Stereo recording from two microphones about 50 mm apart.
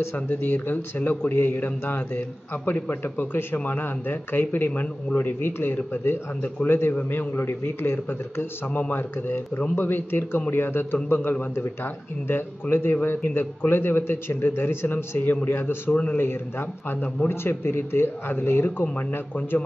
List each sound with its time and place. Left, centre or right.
0.1 s a man's voice: left
15.9 s speech: left
16.2 s a man's voice: left